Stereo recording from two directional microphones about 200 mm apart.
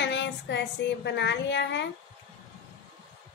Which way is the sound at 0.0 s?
60° left (ahead or behind).